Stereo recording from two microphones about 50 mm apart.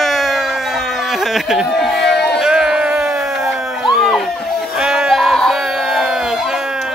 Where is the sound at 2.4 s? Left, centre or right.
Centre.